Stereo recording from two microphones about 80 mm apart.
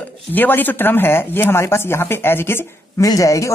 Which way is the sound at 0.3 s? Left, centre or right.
Left.